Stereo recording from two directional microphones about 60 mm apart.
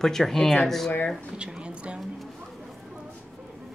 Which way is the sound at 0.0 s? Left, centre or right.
Centre.